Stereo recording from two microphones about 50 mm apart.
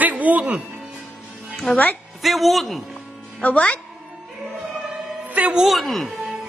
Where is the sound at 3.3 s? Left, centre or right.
Left.